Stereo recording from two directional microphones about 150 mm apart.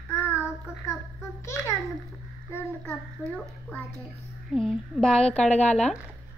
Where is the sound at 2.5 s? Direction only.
10° left (ahead or behind).